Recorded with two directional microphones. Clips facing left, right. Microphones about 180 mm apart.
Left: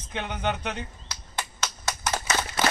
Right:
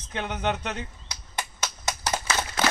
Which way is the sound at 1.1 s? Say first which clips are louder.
Even; 20° right (ahead or behind).